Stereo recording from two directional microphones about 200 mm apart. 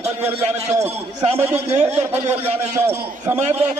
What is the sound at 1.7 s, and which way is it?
Speech, 30° right (ahead or behind).